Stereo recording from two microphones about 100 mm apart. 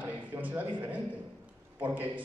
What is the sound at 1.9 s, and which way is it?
Speech, 20° right (ahead or behind).